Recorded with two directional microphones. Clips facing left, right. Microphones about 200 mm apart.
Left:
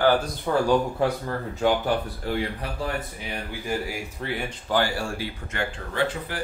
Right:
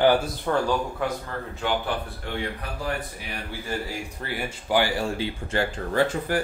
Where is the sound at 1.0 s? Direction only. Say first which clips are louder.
Left 4 dB; 30° left (ahead or behind).